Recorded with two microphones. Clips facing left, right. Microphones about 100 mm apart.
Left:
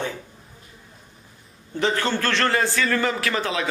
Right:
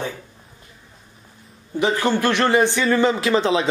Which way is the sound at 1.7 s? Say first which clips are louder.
Right 3 dB; 15° right (ahead or behind).